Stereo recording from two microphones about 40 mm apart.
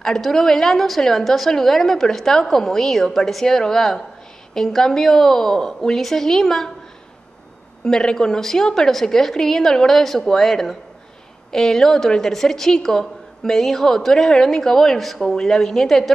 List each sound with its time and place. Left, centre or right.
0.0 s a woman's voice: centre
7.8 s a woman's voice: centre